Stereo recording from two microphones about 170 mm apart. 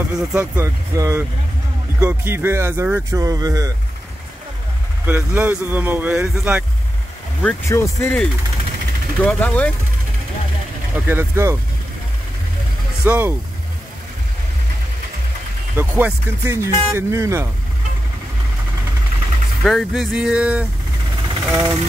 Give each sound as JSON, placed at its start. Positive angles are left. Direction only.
{"t": 0.3, "sound": "speech", "side_deg": -15}
{"t": 5.0, "sound": "speech", "side_deg": -10}
{"t": 7.4, "sound": "speech", "side_deg": 15}
{"t": 11.1, "sound": "speech", "side_deg": -15}
{"t": 13.0, "sound": "speech", "side_deg": -10}
{"t": 15.7, "sound": "speech", "side_deg": -15}
{"t": 19.6, "sound": "speech", "side_deg": 0}